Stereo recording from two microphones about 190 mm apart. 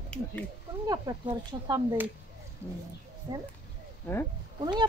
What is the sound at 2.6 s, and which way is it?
Bird, 15° right (ahead or behind).